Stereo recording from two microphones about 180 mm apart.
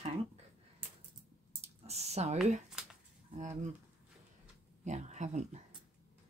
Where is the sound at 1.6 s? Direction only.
35° right (ahead or behind).